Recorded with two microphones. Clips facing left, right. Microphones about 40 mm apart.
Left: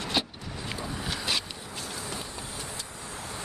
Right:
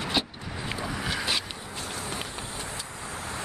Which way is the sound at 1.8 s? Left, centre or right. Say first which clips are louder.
Right 3 dB; right.